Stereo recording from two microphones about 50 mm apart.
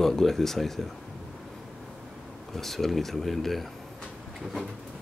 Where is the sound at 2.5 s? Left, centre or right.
Centre.